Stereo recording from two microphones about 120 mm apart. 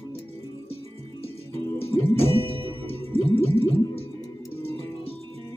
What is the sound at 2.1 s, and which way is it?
Music, 50° left (ahead or behind).